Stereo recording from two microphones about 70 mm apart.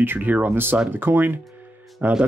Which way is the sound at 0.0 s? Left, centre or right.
Right.